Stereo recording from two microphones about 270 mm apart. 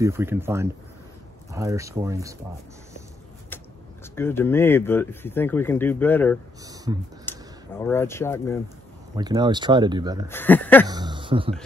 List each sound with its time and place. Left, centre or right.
0.0 s speech: centre
4.1 s speech: centre
6.6 s speech: centre
7.2 s speech: centre
9.1 s speech: centre
10.2 s speech: centre
10.9 s speech: centre